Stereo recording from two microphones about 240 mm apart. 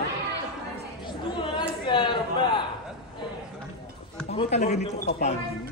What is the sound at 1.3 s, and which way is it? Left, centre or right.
A woman's voice, centre.